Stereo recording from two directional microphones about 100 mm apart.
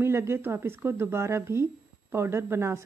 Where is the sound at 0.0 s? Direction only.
25° right (ahead or behind).